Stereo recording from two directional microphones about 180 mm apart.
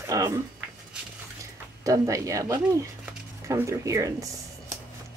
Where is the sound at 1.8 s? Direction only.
20° right (ahead or behind).